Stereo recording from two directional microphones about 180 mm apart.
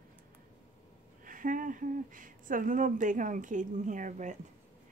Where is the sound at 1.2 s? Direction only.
50° right (ahead or behind).